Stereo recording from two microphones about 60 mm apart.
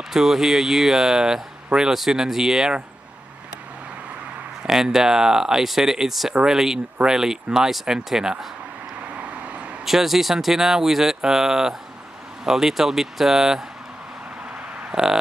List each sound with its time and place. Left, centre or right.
0.1 s speech: centre
4.6 s speech: centre
9.1 s vehicle: right
9.8 s speech: centre
14.9 s a sound: centre